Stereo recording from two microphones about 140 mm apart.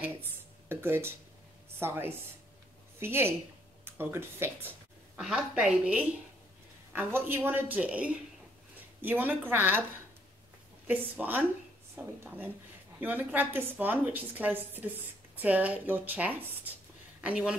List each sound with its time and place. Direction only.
0.0 s a woman's voice: 15° right (ahead or behind)
5.1 s a woman's voice: 5° right (ahead or behind)
10.9 s a woman's voice: 10° right (ahead or behind)